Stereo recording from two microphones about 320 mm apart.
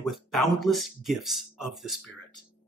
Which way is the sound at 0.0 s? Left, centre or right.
Centre.